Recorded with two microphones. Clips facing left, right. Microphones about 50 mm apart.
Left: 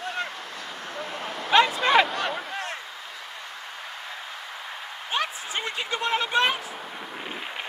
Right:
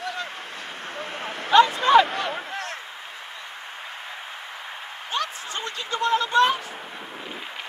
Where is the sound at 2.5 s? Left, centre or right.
Centre.